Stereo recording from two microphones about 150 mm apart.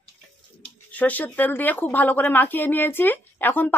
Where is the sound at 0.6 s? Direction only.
10° left (ahead or behind).